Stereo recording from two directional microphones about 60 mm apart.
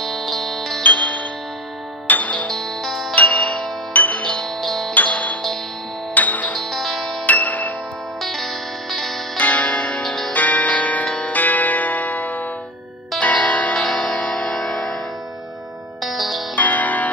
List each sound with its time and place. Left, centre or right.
0.0 s music: centre
0.8 s music: left
2.4 s music: centre
3.2 s music: left
4.3 s music: centre
4.9 s music: left
6.7 s music: centre
7.2 s music: left
8.2 s music: centre
9.4 s music: left
10.0 s music: centre
10.3 s music: left
16.0 s music: centre
16.5 s music: left